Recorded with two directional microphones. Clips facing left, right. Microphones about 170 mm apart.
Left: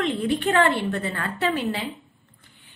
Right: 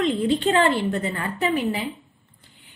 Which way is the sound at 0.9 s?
15° right (ahead or behind).